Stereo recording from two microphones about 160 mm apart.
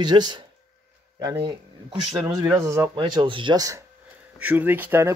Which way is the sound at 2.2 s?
25° right (ahead or behind).